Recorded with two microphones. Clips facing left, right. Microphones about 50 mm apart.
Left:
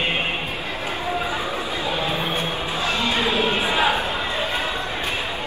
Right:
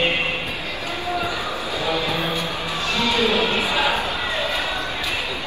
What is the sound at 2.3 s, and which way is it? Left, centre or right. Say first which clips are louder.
Music: even; left.